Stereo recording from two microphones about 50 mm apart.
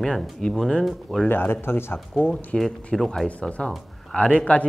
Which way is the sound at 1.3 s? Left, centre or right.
Left.